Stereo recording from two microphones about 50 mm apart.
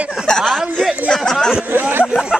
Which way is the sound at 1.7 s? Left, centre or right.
Right.